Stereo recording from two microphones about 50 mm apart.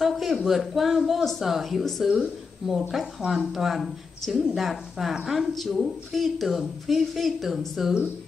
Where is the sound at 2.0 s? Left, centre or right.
Centre.